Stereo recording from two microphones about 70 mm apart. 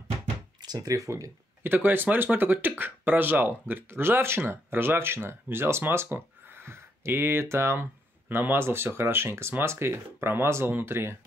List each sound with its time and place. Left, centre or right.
0.6 s speech: right
1.6 s speech: right